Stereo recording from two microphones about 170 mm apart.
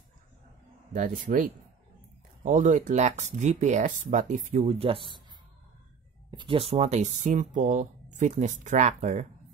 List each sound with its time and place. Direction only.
0.9 s speech: 50° right (ahead or behind)
2.4 s speech: 50° right (ahead or behind); by 5.2 s 30° right (ahead or behind)
6.3 s speech: 30° right (ahead or behind)